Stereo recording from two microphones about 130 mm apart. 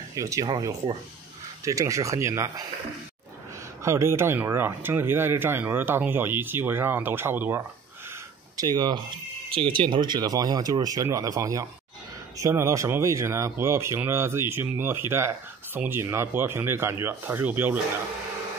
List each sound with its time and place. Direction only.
0.1 s speech: 25° right (ahead or behind)
3.8 s speech: 20° right (ahead or behind)
8.5 s speech: 30° right (ahead or behind); by 17.7 s 15° right (ahead or behind)